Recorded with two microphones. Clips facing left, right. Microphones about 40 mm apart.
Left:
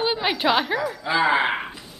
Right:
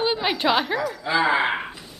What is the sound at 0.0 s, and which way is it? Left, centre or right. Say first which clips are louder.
Speech: even; centre.